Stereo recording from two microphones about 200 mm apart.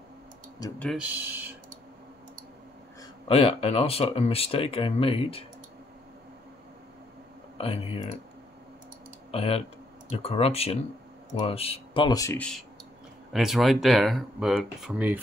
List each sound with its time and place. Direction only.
0.7 s speech: 5° left (ahead or behind)
1.1 s speech: 10° right (ahead or behind)
3.3 s speech: 30° left (ahead or behind)
7.5 s speech: 30° left (ahead or behind)
9.3 s speech: 30° left (ahead or behind)
12.4 s speech: 5° left (ahead or behind)